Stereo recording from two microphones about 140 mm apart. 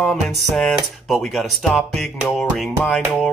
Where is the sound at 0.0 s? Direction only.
5° left (ahead or behind).